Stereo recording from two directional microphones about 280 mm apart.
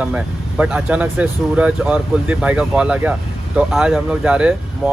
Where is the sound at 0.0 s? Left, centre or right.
Centre.